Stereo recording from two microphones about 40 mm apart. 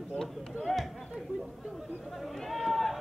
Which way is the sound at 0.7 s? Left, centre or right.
Left.